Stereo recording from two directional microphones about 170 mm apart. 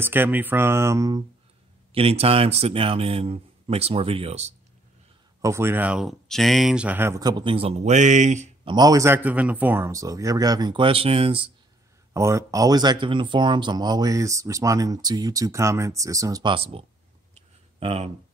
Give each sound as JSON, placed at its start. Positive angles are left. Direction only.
{"t": 0.0, "sound": "speech", "side_deg": -10}
{"t": 2.0, "sound": "speech", "side_deg": -35}
{"t": 5.4, "sound": "speech", "side_deg": -15}
{"t": 8.6, "sound": "speech", "side_deg": -25}
{"t": 12.1, "sound": "speech", "side_deg": -15}
{"t": 16.5, "sound": "speech", "side_deg": -35}